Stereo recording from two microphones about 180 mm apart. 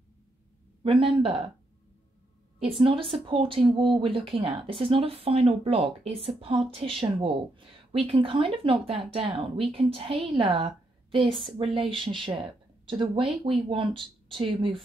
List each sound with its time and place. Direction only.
0.8 s speech: 30° right (ahead or behind)
2.8 s speech: 30° right (ahead or behind)